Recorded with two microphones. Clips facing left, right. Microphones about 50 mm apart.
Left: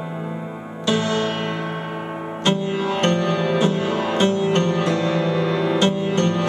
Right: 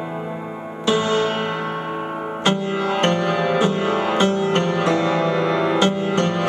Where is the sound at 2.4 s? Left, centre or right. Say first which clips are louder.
Even; right.